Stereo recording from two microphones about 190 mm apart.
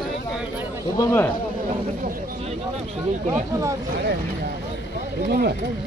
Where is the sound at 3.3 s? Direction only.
15° right (ahead or behind).